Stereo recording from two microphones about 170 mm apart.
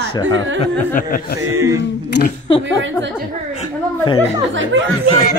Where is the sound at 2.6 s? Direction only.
90° right.